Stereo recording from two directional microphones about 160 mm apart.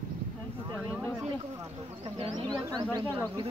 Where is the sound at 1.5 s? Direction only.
15° right (ahead or behind).